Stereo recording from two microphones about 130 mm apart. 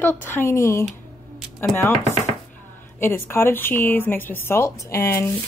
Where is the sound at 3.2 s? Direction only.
20° left (ahead or behind).